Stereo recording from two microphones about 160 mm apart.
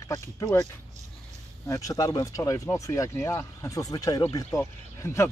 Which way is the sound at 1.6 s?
20° left (ahead or behind).